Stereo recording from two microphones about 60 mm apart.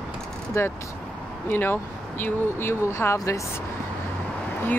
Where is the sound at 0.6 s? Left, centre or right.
Left.